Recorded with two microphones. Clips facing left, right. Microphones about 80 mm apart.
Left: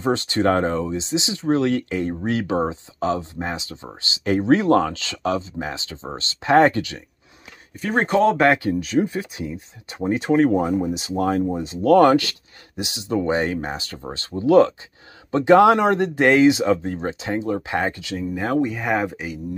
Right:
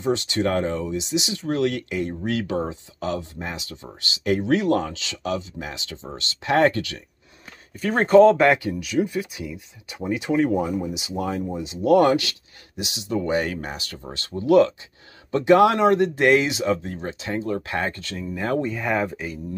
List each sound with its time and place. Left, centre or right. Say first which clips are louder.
0.0 s speech: left 3 dB; left
8.3 s speech: even; left